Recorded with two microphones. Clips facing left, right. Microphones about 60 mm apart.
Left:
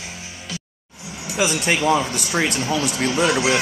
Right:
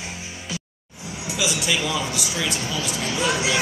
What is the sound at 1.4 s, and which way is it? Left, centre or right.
Speech, left.